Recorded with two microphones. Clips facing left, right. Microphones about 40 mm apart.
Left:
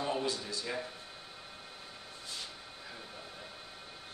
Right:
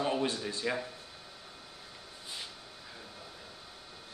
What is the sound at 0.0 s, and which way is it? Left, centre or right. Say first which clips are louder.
Speech: right 3 dB; right.